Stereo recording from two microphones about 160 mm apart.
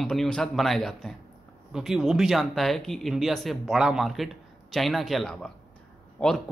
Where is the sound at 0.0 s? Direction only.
Centre (ahead or behind).